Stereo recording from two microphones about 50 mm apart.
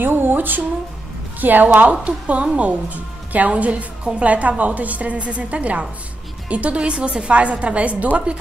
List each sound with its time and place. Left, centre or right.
0.0 s speech: right